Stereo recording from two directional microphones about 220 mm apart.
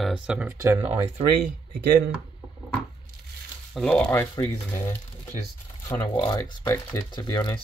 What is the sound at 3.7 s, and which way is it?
Speech, 5° left (ahead or behind).